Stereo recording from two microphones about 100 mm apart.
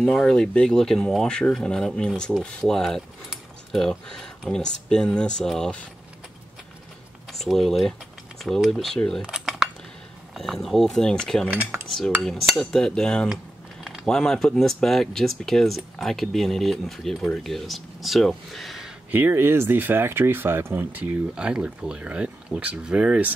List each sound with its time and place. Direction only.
0.0 s speech: 5° left (ahead or behind)
7.3 s speech: centre (ahead or behind)
9.2 s cutlery: 5° right (ahead or behind)
10.3 s speech: centre (ahead or behind)
11.5 s cutlery: 25° right (ahead or behind)
12.2 s speech: 5° left (ahead or behind)
19.1 s speech: 20° right (ahead or behind)